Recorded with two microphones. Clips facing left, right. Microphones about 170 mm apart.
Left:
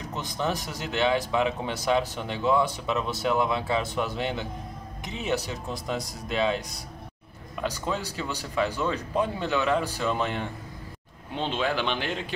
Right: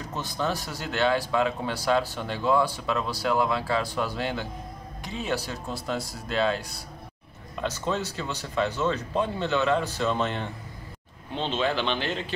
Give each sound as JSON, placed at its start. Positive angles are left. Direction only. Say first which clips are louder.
{"t": 0.0, "sound": "speech", "louder": "even", "side_deg": 20}